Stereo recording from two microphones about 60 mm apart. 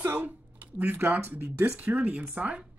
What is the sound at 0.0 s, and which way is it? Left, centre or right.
Speech, right.